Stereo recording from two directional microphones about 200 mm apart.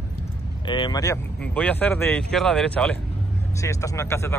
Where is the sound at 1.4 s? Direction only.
5° left (ahead or behind).